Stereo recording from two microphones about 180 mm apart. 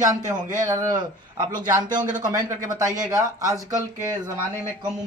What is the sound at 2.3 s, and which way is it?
Speech, 20° right (ahead or behind).